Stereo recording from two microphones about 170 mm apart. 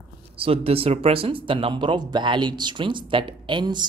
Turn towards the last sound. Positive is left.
turn(degrees=-25)  # may be behind; listen again after turning